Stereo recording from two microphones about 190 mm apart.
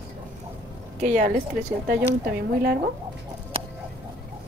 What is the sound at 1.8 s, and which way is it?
Speech, 50° right (ahead or behind).